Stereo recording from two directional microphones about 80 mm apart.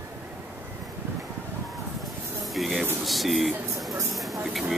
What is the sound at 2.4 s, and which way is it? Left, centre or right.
Snake, centre.